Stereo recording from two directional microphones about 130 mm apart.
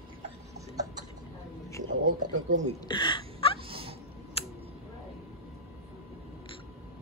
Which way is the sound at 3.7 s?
45° right (ahead or behind).